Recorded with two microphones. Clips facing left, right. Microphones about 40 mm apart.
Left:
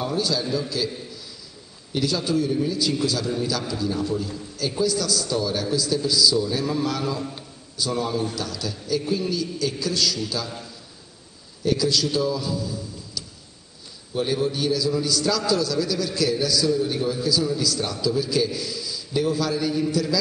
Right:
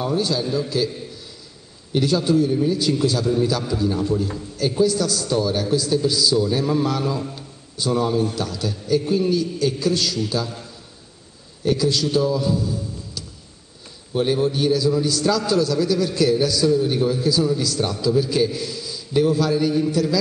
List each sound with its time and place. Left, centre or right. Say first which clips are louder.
0.1 s a man's voice: right 3 dB; right
8.4 s a man's voice: right 4 dB; right
11.6 s a man's voice: right 2 dB; right
19.9 s a man's voice: right 3 dB; right